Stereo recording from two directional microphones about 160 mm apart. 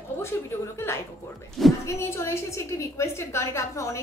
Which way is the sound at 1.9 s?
15° left (ahead or behind).